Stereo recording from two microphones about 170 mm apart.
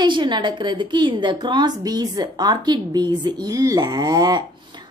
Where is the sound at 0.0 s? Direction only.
25° right (ahead or behind).